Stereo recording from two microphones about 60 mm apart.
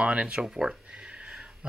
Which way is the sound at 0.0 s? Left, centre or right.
Centre.